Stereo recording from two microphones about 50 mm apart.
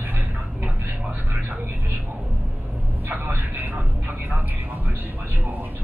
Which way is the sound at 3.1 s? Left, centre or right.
Right.